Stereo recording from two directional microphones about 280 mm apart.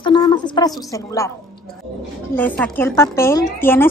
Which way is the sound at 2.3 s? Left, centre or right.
Centre.